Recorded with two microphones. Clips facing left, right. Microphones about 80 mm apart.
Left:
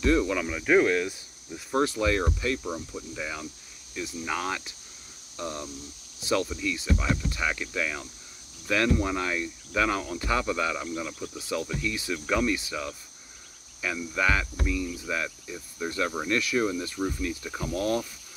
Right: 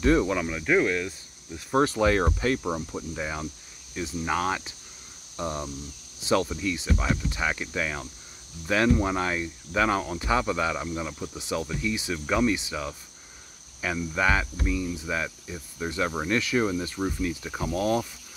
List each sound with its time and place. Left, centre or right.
0.0 s speech: right
0.5 s speech: centre
1.9 s speech: right; by 18.0 s centre